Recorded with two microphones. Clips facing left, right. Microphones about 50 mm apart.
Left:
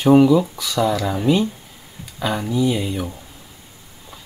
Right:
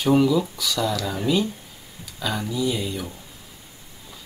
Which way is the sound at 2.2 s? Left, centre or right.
Left.